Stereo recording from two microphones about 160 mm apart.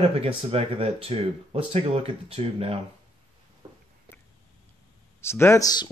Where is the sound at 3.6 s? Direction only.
35° right (ahead or behind).